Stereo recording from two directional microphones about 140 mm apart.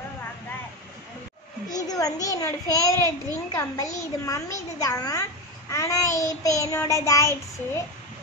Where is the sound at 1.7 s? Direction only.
25° left (ahead or behind).